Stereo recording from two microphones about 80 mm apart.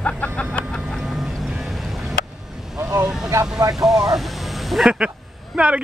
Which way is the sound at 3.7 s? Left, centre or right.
Centre.